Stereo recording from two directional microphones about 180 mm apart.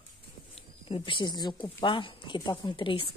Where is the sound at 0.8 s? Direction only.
30° left (ahead or behind).